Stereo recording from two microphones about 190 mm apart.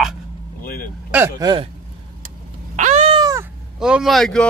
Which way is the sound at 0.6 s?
50° left (ahead or behind).